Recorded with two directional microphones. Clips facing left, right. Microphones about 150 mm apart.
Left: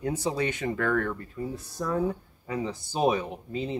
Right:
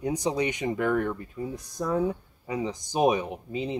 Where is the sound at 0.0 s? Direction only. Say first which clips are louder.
Right 1 dB; 15° right (ahead or behind).